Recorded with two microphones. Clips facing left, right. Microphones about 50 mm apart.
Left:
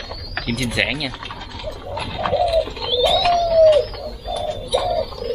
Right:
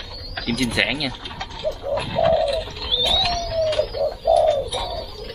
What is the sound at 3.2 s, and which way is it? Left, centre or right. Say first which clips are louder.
Pigeon: left 8 dB; centre.